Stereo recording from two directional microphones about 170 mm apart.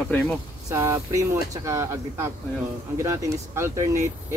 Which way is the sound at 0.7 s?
15° right (ahead or behind).